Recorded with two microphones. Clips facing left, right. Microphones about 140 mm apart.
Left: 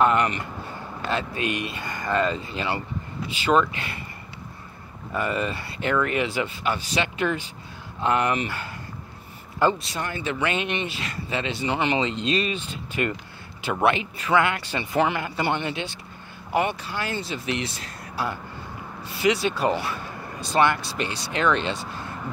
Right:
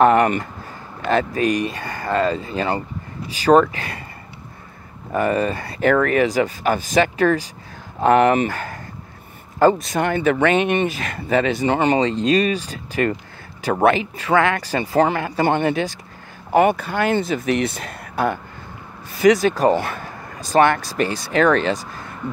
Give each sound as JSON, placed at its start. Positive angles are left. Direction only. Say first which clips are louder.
{"t": 1.0, "sound": "speech", "louder": "right 8 dB", "side_deg": -45}
{"t": 5.1, "sound": "speech", "louder": "right 7 dB", "side_deg": -40}
{"t": 9.6, "sound": "speech", "louder": "right 7 dB", "side_deg": -45}
{"t": 19.1, "sound": "speech", "louder": "right 8 dB", "side_deg": -45}